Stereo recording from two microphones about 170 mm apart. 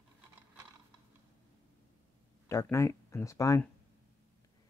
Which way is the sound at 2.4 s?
15° left (ahead or behind).